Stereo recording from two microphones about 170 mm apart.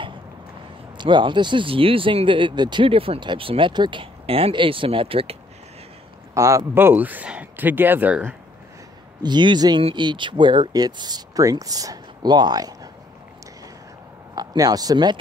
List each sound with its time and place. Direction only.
0.9 s speech: 30° right (ahead or behind)
6.3 s speech: 20° right (ahead or behind)
9.2 s speech: 25° right (ahead or behind)
14.3 s speech: 25° right (ahead or behind)